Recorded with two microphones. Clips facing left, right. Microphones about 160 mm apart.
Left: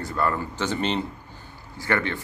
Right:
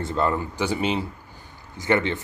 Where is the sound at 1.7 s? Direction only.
20° right (ahead or behind).